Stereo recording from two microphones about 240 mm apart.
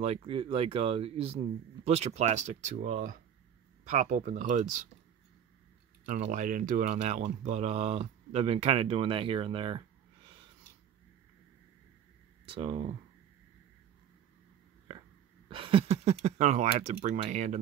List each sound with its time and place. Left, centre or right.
0.0 s speech: right
6.0 s speech: right
12.4 s speech: right
15.5 s speech: right